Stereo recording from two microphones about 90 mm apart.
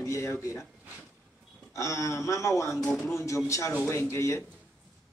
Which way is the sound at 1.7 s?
35° left (ahead or behind).